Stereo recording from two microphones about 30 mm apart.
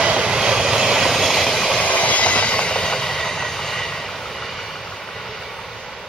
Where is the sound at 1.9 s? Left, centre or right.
Left; by 4.8 s centre.